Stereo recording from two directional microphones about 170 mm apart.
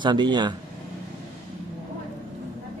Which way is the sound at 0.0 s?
25° right (ahead or behind).